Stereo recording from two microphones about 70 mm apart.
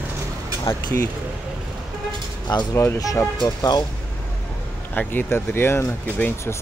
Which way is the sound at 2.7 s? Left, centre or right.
Left.